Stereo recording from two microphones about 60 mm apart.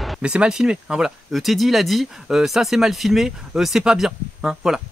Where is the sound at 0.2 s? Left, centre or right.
Centre.